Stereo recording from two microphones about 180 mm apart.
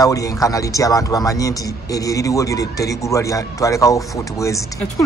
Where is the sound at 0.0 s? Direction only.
20° left (ahead or behind).